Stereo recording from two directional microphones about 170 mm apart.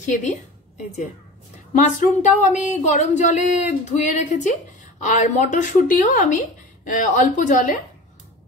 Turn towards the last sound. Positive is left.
turn(degrees=50)  # may be behind; listen again after turning